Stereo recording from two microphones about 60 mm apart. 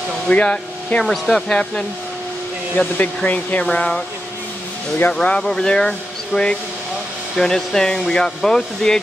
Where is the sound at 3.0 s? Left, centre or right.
Left.